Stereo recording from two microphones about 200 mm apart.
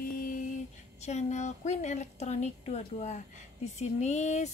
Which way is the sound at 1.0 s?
35° left (ahead or behind).